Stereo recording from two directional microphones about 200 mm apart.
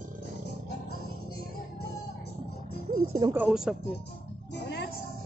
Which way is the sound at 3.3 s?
5° right (ahead or behind).